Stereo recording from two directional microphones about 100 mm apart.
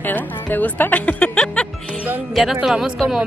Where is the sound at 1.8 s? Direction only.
15° right (ahead or behind).